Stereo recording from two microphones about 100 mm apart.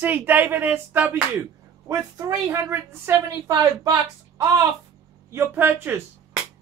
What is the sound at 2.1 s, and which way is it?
Speech, 35° right (ahead or behind).